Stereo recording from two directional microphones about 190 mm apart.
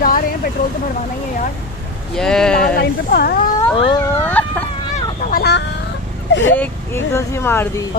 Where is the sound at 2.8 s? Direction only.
55° left (ahead or behind).